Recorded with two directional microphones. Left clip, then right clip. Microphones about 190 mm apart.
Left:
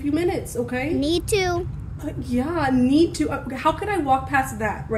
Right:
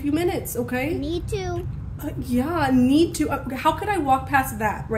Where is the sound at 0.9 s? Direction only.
75° left (ahead or behind).